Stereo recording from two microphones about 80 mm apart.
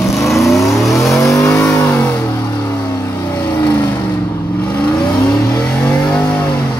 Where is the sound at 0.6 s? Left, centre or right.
Left.